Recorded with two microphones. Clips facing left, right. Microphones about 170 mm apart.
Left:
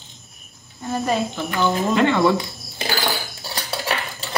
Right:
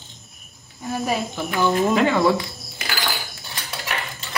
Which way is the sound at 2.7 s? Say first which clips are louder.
Left 4 dB; 30° left (ahead or behind).